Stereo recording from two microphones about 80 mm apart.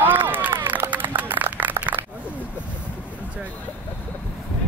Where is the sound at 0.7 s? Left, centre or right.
Right.